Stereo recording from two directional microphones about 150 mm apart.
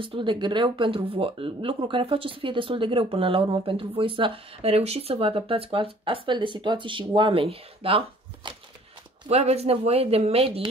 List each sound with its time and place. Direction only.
0.0 s speech: 35° right (ahead or behind)
8.4 s a sound: 30° right (ahead or behind)
9.3 s speech: 45° right (ahead or behind)